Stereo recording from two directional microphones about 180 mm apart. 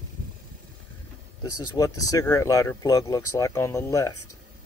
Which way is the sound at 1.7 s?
20° left (ahead or behind).